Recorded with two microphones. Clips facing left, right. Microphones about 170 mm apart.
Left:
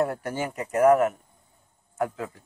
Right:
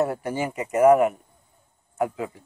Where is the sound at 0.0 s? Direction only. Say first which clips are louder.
Right 2 dB; 5° right (ahead or behind).